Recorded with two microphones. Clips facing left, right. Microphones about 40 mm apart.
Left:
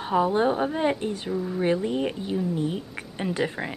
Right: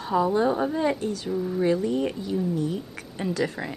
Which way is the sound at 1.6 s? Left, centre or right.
Left.